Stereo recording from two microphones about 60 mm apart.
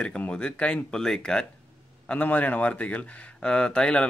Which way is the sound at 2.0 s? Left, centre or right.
Left.